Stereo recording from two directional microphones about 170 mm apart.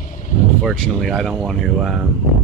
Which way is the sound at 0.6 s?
Centre (ahead or behind).